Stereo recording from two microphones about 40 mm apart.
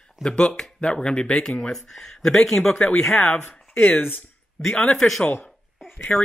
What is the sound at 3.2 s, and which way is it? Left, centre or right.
Speech, left.